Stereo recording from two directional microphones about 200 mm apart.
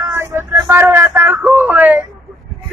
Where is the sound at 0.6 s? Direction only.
10° right (ahead or behind).